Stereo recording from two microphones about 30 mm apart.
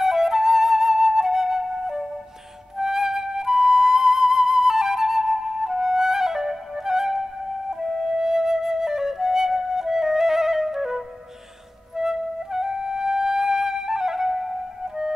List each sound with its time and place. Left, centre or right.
0.0 s flute: centre
12.0 s flute: centre